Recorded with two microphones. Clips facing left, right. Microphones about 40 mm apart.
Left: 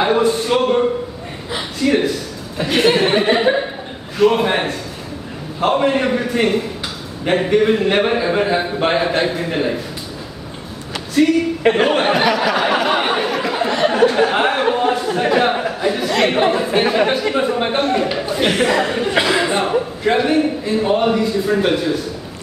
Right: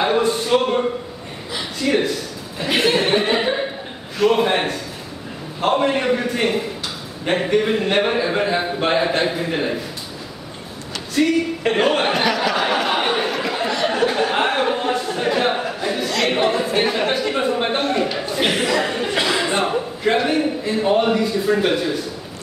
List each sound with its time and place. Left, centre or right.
0.0 s speech: centre
11.7 s a sound: centre
14.1 s speech: centre
16.3 s speech: centre
17.1 s speech: centre
19.5 s speech: centre